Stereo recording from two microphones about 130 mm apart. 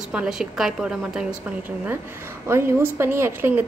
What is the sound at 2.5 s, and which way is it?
A woman's voice, 20° right (ahead or behind).